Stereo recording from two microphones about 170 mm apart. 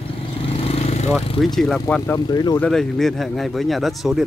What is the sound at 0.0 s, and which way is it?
Vehicle, 35° left (ahead or behind).